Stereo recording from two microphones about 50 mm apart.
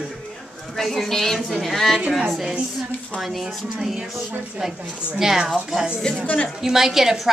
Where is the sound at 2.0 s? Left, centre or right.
Centre.